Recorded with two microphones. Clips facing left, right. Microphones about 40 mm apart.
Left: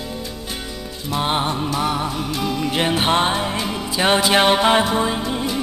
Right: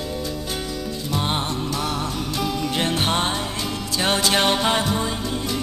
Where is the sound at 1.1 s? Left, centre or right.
Centre.